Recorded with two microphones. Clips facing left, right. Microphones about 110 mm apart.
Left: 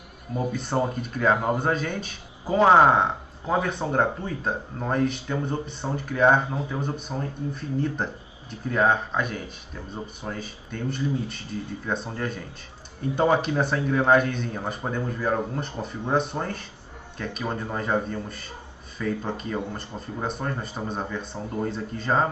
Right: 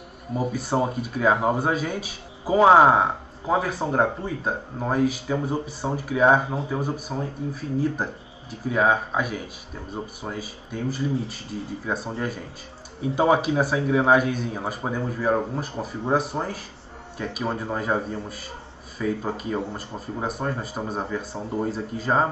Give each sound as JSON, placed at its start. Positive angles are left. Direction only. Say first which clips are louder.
{"t": 0.5, "sound": "speech", "louder": "right 1 dB", "side_deg": -5}
{"t": 1.3, "sound": "speech", "louder": "right 1 dB", "side_deg": -15}
{"t": 1.6, "sound": "speech", "louder": "right 1 dB", "side_deg": -5}